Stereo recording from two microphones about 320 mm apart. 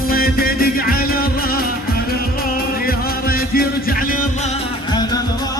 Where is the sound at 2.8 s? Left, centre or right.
Left.